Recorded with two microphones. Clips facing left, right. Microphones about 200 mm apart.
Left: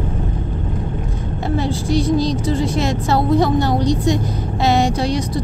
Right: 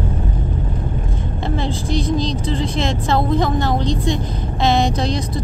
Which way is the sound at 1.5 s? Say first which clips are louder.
Left 4 dB; 10° left (ahead or behind).